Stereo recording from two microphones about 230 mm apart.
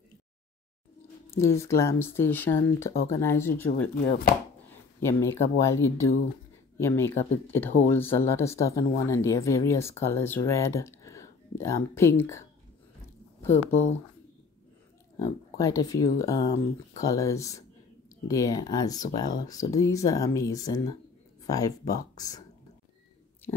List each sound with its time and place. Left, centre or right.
1.4 s speech: centre
4.0 s chopping: left
4.6 s speech: centre
15.1 s speech: centre